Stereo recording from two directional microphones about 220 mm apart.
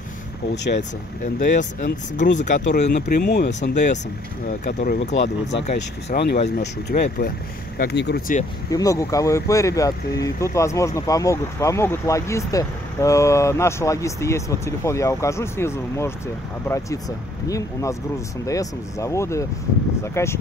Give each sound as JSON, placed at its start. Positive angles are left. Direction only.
{"t": 1.2, "sound": "speech", "side_deg": 35}
{"t": 5.6, "sound": "speech", "side_deg": 30}
{"t": 8.6, "sound": "speech", "side_deg": 15}